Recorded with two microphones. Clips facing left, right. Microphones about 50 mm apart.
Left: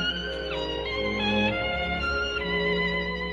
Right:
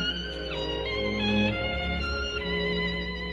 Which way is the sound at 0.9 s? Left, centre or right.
Centre.